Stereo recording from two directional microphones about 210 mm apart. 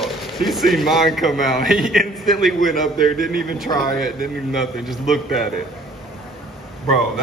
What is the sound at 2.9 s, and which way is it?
Speech, 40° right (ahead or behind).